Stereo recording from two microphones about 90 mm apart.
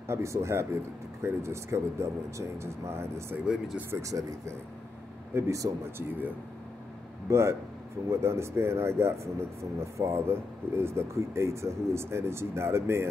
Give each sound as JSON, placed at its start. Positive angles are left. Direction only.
{"t": 0.1, "sound": "speech", "side_deg": -30}
{"t": 7.2, "sound": "speech", "side_deg": -30}